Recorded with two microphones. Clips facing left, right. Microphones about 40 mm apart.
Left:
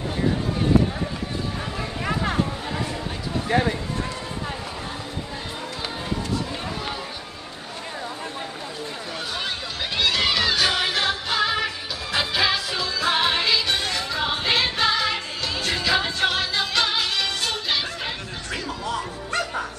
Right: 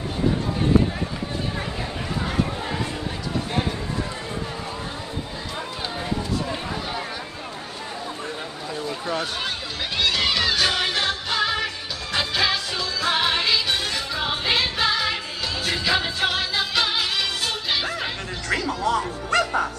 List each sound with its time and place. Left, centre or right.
9.9 s music: centre
18.5 s music: right